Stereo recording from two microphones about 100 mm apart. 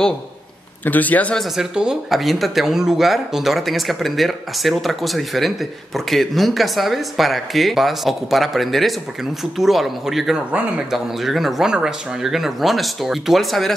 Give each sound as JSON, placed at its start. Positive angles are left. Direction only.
{"t": 0.8, "sound": "speech", "side_deg": 15}
{"t": 1.4, "sound": "speech", "side_deg": -5}